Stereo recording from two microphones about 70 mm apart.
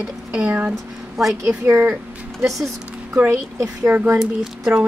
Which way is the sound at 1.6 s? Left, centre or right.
Right.